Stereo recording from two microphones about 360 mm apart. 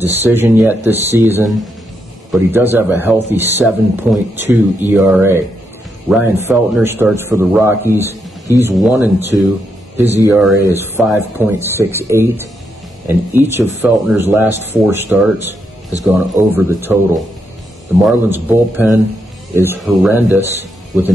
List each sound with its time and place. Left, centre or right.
0.0 s speech: centre